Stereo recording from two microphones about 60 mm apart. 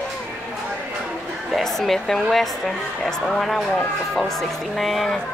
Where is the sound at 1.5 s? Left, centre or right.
Centre.